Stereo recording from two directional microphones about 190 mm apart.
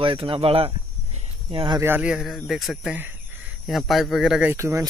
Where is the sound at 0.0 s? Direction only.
30° right (ahead or behind).